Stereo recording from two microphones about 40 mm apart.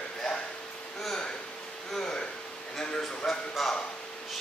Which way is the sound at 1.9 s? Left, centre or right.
Centre.